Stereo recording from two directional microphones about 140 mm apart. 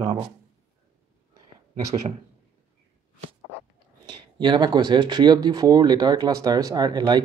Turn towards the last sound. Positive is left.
turn(degrees=-30)  # may be behind; listen again after turning